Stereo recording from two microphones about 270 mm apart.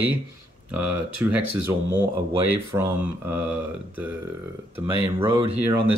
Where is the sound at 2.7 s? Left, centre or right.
Centre.